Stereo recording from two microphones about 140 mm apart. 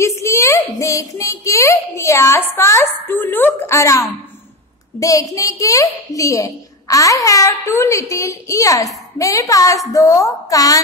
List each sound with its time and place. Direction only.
0.0 s a child's voice: 20° left (ahead or behind)
5.0 s a child's voice: 25° left (ahead or behind)